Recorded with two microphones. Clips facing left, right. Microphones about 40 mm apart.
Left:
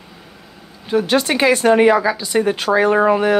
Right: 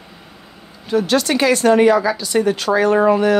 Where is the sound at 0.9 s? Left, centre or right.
Left.